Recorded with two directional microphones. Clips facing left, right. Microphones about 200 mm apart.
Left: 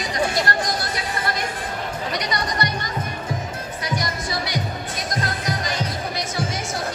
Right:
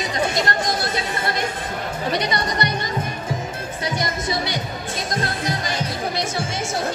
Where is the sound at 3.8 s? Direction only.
25° right (ahead or behind).